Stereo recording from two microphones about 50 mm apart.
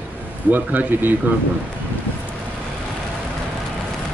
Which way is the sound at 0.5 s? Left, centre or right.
Right.